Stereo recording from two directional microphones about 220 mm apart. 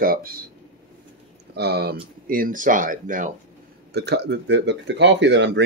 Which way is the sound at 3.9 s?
50° right (ahead or behind).